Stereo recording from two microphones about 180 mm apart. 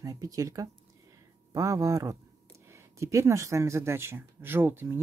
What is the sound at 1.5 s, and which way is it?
Speech, 20° right (ahead or behind).